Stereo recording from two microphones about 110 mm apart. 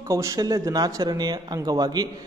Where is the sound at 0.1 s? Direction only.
30° right (ahead or behind).